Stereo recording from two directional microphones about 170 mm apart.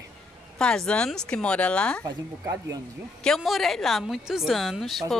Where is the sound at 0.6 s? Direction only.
5° left (ahead or behind).